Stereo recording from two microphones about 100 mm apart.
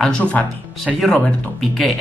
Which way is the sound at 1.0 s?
10° left (ahead or behind).